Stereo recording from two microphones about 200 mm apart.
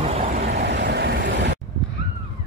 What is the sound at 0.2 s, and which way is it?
Vehicle, 40° right (ahead or behind).